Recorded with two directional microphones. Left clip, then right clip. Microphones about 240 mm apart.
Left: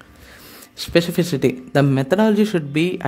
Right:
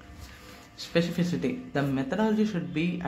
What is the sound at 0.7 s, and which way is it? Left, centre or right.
Speech, left.